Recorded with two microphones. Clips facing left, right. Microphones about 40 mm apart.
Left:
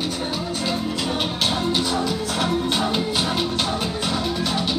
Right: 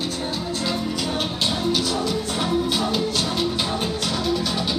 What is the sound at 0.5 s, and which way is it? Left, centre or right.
Music, centre.